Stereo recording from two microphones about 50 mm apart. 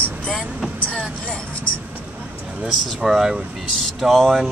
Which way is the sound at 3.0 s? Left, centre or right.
Centre.